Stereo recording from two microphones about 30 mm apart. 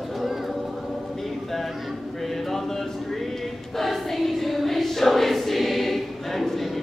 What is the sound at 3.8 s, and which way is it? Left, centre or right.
Choir, centre.